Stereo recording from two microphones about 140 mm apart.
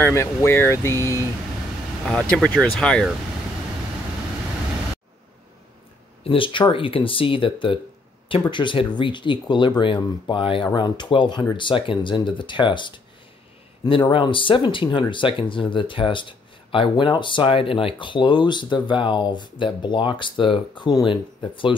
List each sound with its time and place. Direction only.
0.0 s speech: 20° left (ahead or behind)
2.0 s speech: 5° left (ahead or behind)
6.2 s speech: 40° left (ahead or behind)